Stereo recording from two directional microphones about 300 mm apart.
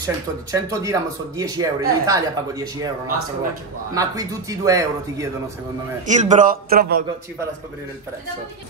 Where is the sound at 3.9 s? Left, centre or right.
Centre.